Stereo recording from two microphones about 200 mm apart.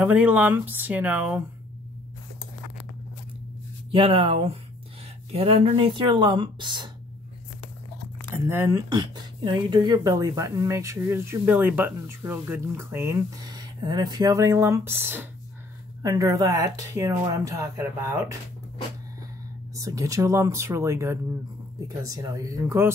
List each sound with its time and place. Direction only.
0.0 s speech: 10° right (ahead or behind)
3.9 s speech: 25° right (ahead or behind)
8.3 s speech: 10° right (ahead or behind)
19.7 s speech: 15° right (ahead or behind)